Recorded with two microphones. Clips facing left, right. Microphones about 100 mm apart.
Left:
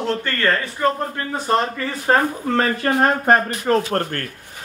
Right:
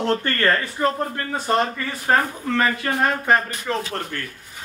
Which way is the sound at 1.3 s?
30° left (ahead or behind).